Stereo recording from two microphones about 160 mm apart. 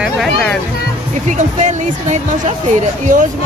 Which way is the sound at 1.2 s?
50° right (ahead or behind).